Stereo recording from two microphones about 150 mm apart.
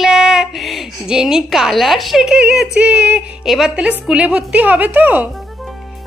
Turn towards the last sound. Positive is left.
turn(degrees=0)  # may be behind; listen again after turning